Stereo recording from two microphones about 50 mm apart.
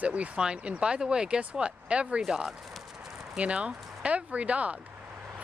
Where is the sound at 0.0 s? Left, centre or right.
Right.